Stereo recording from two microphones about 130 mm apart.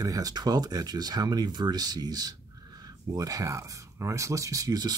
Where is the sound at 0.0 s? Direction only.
30° right (ahead or behind).